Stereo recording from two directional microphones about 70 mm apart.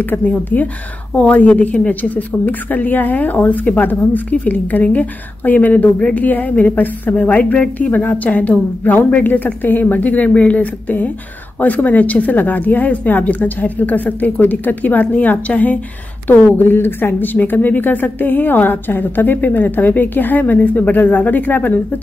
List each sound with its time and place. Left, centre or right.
0.0 s a woman's voice: left